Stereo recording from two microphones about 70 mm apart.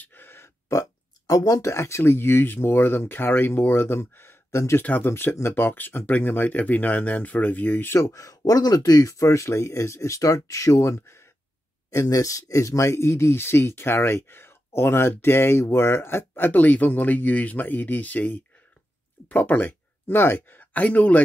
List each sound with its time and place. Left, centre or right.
0.0 s a sound: left
0.7 s burping: left
1.7 s speech: left
8.0 s speech: left
8.4 s speech: left